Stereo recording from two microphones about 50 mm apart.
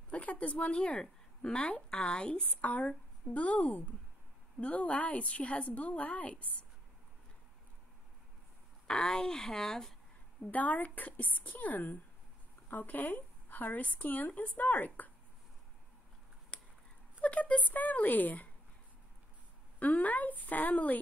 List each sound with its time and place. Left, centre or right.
0.1 s a woman's voice: left
2.6 s speech: left
8.8 s speech: centre
10.5 s speech: left
17.2 s speech: left
19.8 s speech: left